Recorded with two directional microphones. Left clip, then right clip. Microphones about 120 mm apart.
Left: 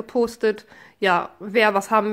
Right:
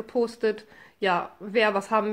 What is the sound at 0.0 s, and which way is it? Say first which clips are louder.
Speech: left 4 dB; 40° left (ahead or behind).